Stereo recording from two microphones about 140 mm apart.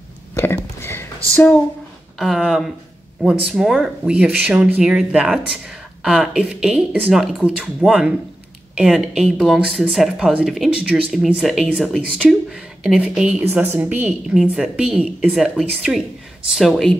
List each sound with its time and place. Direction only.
0.3 s a sound: 15° left (ahead or behind)
1.3 s speech: 10° left (ahead or behind)
2.1 s speech: centre (ahead or behind)